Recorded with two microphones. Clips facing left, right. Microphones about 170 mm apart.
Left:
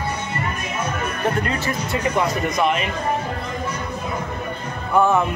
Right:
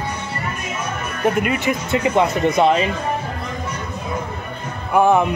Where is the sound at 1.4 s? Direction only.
20° right (ahead or behind).